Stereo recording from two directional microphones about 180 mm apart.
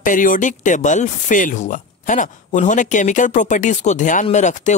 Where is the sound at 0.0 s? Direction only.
45° left (ahead or behind).